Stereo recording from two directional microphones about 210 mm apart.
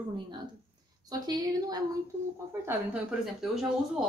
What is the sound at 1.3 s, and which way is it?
Speech, 20° right (ahead or behind).